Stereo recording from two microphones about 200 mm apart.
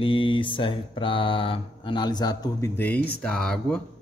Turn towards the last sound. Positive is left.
turn(degrees=5)  # may be behind; listen again after turning